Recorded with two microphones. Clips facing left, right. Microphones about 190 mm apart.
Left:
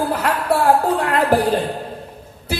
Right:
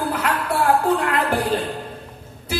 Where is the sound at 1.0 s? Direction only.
35° left (ahead or behind).